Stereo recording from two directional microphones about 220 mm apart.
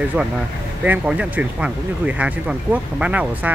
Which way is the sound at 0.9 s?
5° right (ahead or behind).